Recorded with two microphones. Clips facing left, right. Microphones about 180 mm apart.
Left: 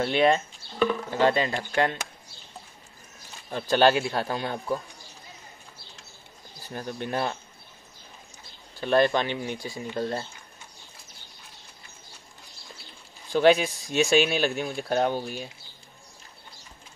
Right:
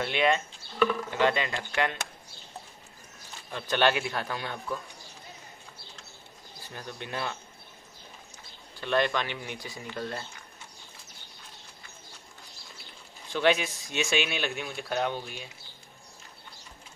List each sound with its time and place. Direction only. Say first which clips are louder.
0.0 s speech: left 4 dB; 35° left (ahead or behind)
3.5 s speech: left 5 dB; 35° left (ahead or behind)
6.7 s speech: left 7 dB; 40° left (ahead or behind)
8.8 s speech: left 5 dB; 35° left (ahead or behind)
13.3 s speech: left 6 dB; 35° left (ahead or behind)